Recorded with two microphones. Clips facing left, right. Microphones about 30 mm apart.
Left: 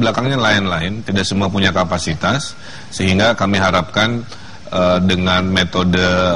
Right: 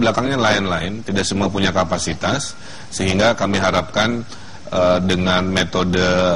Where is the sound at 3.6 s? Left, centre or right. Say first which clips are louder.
Left 3 dB; centre.